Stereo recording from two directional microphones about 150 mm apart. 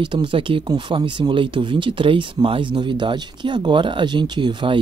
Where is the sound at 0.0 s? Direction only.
30° right (ahead or behind).